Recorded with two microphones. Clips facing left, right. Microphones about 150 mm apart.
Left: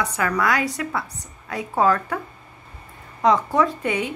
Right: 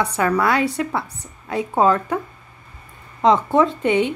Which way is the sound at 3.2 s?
25° right (ahead or behind).